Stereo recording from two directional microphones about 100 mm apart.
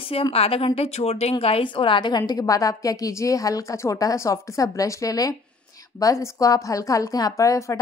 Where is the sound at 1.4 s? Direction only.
65° left (ahead or behind).